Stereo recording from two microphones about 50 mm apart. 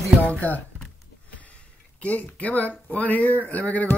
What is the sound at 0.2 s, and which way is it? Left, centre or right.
Speech, left.